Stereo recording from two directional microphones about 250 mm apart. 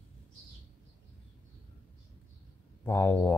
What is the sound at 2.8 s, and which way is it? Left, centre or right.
Speech, centre.